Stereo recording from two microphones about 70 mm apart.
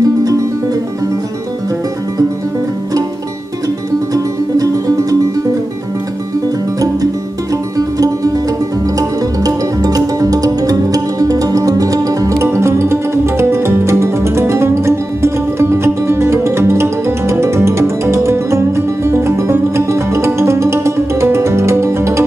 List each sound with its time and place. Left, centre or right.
0.0 s music: right
4.1 s music: right
7.7 s music: right
12.4 s music: right